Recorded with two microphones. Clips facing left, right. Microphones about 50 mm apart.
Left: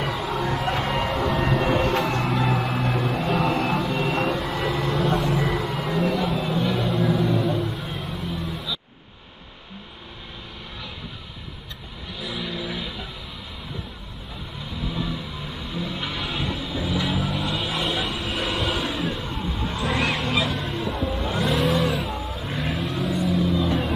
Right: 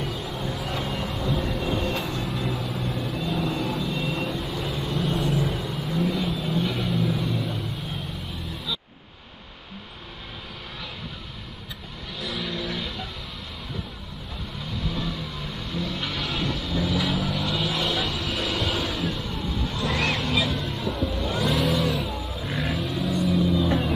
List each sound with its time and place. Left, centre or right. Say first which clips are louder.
0.0 s a sound: left 5 dB; left
5.1 s vehicle: left 3 dB; left
6.6 s vehicle: left 4 dB; centre
12.2 s vehicle: even; centre
14.8 s vehicle: left 2 dB; centre
20.2 s music: left 1 dB; left
20.7 s vehicle: left 2 dB; left
21.1 s vehicle: left 1 dB; left
21.5 s vehicle: left 2 dB; centre